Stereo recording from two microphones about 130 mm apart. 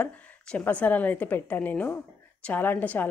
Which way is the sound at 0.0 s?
10° left (ahead or behind).